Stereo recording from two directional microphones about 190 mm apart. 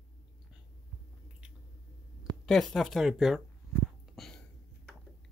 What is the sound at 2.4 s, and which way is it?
Speech, centre (ahead or behind).